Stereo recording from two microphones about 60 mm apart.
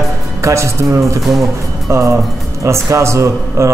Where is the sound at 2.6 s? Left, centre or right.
Right.